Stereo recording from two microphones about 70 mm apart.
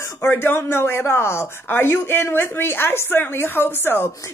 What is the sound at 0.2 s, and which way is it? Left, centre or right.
A woman's voice, left.